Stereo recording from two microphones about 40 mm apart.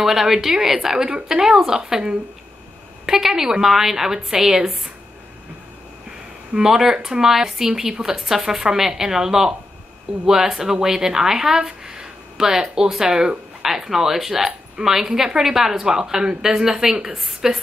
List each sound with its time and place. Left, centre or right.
0.0 s speech: centre
6.5 s speech: centre